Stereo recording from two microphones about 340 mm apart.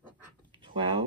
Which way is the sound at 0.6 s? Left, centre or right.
Centre.